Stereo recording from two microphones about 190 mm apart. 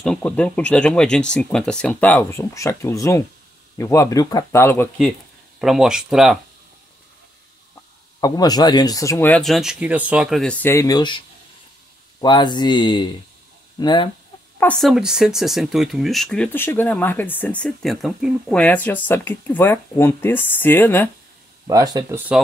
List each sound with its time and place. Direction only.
0.0 s speech: 5° left (ahead or behind)
5.6 s speech: centre (ahead or behind)
8.2 s speech: 20° left (ahead or behind)
14.6 s speech: 5° left (ahead or behind)
21.6 s speech: 20° right (ahead or behind)